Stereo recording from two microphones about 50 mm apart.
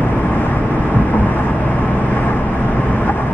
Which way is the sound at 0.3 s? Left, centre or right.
Left.